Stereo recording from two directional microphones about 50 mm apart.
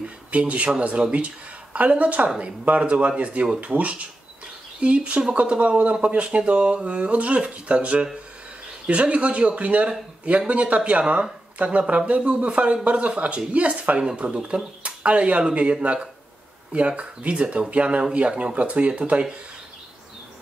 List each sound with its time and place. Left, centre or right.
0.0 s speech: right